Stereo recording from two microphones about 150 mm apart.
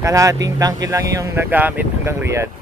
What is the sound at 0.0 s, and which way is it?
Speech, 20° right (ahead or behind).